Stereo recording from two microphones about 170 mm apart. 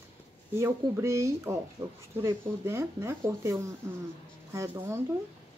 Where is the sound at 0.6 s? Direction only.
15° right (ahead or behind).